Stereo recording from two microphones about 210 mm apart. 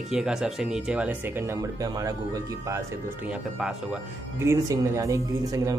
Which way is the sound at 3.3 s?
5° right (ahead or behind).